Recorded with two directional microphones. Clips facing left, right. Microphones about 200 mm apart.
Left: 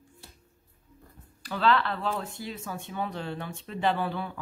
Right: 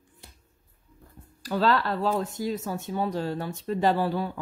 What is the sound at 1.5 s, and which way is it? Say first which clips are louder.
Speech: right 2 dB; 40° right (ahead or behind).